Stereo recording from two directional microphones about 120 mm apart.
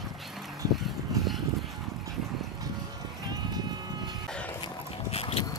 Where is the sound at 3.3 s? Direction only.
35° right (ahead or behind).